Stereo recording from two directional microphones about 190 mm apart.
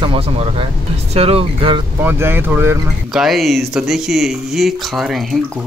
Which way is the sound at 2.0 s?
10° right (ahead or behind).